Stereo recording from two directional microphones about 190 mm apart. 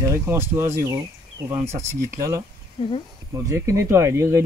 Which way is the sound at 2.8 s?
25° left (ahead or behind).